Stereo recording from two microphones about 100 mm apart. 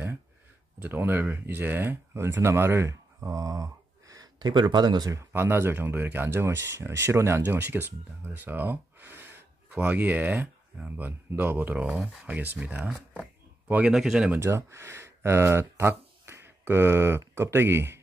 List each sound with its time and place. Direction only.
0.7 s speech: 20° right (ahead or behind); by 5.2 s 40° right (ahead or behind)
5.3 s speech: 20° right (ahead or behind)
13.2 s a sound: 15° right (ahead or behind)
13.9 s speech: 5° right (ahead or behind)
14.4 s speech: 25° right (ahead or behind)